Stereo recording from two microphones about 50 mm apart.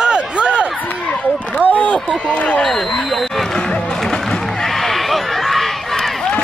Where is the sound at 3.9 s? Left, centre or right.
Centre.